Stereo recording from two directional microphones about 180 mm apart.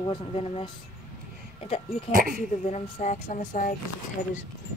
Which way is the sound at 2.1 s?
50° right (ahead or behind).